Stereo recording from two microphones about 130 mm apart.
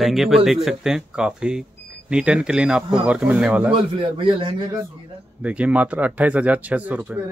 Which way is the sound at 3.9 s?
40° right (ahead or behind).